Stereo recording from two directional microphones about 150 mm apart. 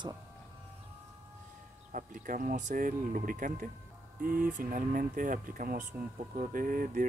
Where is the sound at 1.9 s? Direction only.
60° right (ahead or behind).